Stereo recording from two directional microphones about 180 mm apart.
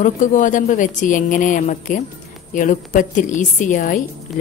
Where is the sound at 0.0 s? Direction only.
45° left (ahead or behind).